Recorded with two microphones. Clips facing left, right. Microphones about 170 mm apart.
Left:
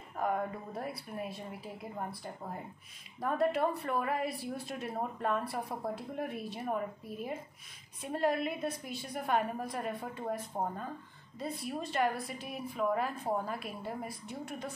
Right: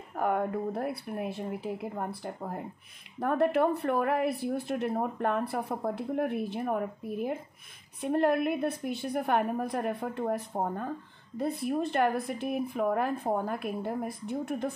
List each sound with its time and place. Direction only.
0.1 s a woman's voice: 65° right (ahead or behind)